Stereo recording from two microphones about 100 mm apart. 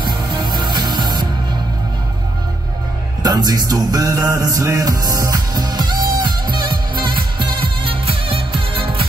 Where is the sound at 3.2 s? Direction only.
40° right (ahead or behind).